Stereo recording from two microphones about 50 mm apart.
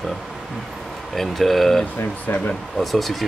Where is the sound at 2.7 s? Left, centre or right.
Centre.